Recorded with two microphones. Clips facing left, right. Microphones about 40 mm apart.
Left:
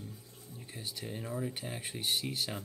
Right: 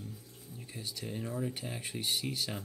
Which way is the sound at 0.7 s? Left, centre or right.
Left.